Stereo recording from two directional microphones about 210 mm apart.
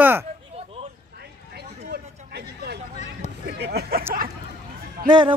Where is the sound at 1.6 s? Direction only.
50° right (ahead or behind).